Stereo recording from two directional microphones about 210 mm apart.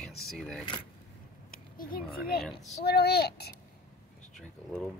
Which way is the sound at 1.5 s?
45° left (ahead or behind).